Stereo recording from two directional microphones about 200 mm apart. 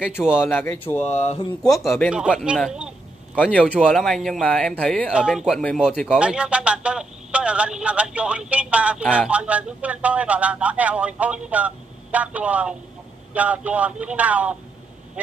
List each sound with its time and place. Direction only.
0.4 s speech: 10° left (ahead or behind)
1.0 s speech: 35° left (ahead or behind)
1.6 s speech: centre (ahead or behind)